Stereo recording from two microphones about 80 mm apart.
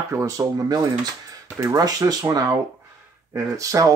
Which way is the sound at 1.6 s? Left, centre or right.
Right.